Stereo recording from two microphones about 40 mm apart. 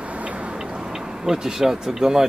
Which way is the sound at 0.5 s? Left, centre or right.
Centre.